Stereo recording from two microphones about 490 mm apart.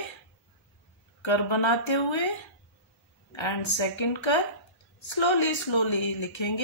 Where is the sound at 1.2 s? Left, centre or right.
Left.